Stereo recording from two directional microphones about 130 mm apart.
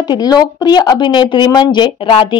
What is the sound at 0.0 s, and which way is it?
Speech, 30° left (ahead or behind).